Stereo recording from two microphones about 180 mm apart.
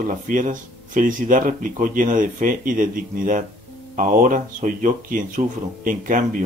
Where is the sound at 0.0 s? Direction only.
45° right (ahead or behind).